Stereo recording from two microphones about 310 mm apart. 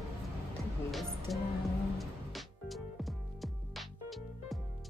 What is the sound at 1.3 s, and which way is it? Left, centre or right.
Music, centre.